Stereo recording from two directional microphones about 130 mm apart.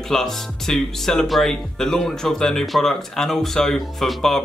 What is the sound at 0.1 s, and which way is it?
Speech, 5° left (ahead or behind).